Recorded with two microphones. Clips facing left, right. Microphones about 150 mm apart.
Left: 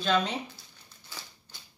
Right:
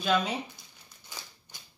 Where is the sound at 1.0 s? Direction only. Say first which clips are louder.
Even; 15° right (ahead or behind).